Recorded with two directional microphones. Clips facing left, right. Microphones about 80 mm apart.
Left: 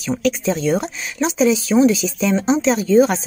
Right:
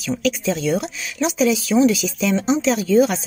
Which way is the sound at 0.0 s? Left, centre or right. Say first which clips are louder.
Left 2 dB; left.